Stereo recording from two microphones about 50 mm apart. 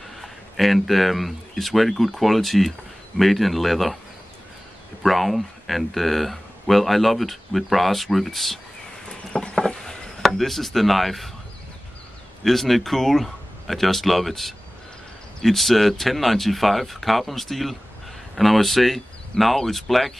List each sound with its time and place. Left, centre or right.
0.2 s speech: centre
5.0 s speech: centre
9.0 s a sound: centre
9.6 s a sound: centre
10.2 s speech: centre
12.4 s speech: centre